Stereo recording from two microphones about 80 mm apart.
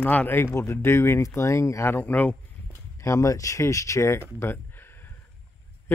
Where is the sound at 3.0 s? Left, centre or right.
Left.